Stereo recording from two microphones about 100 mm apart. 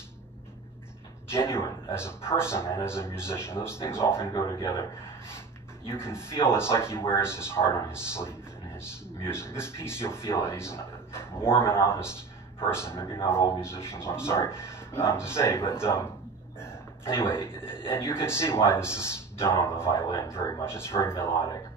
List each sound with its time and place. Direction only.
1.3 s a man's voice: 25° left (ahead or behind)
4.4 s speech: 40° left (ahead or behind)
6.3 s a man's voice: 25° left (ahead or behind)